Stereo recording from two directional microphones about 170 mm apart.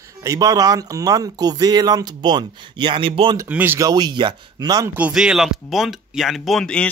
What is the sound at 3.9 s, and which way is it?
Speech, 25° right (ahead or behind).